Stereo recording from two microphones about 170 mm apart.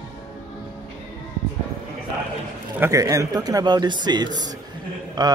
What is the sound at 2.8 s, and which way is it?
Speech, 20° right (ahead or behind).